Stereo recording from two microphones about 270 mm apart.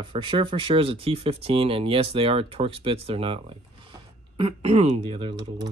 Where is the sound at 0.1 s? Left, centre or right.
Centre.